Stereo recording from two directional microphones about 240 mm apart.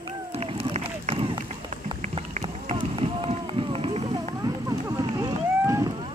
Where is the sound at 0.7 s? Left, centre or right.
Right.